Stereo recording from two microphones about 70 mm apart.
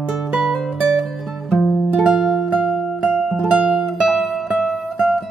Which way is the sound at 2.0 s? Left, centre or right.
Centre.